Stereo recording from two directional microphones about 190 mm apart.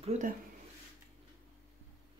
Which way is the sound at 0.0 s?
35° right (ahead or behind).